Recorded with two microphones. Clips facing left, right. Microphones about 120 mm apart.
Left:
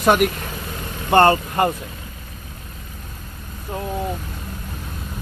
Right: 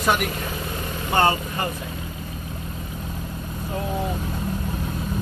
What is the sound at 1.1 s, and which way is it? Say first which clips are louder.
Speech: left 6 dB; 60° left (ahead or behind).